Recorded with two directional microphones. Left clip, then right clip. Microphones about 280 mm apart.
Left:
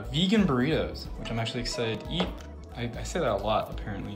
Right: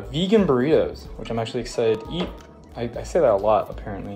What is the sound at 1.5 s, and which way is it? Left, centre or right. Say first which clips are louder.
Speech: right 6 dB; right.